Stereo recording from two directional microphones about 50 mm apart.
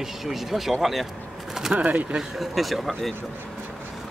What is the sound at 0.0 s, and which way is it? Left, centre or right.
Speech, centre.